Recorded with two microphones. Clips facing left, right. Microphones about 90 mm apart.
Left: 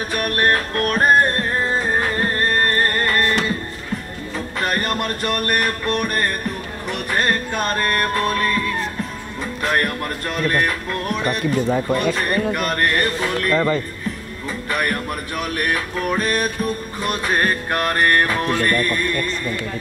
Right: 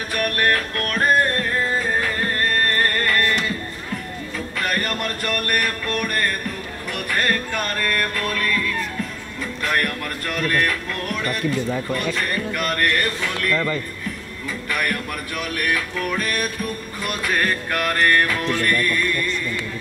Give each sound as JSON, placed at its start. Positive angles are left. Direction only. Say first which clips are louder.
{"t": 0.2, "sound": "music", "louder": "left 1 dB", "side_deg": 25}
{"t": 4.6, "sound": "music", "louder": "left 3 dB", "side_deg": 30}
{"t": 12.1, "sound": "speech", "louder": "left 4 dB", "side_deg": 25}
{"t": 14.7, "sound": "music", "louder": "left 3 dB", "side_deg": 30}
{"t": 17.0, "sound": "speech", "louder": "left 2 dB", "side_deg": 30}